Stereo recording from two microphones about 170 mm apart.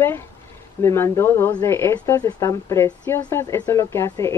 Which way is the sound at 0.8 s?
15° left (ahead or behind).